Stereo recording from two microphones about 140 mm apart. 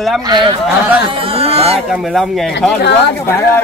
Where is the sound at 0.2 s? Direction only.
30° right (ahead or behind).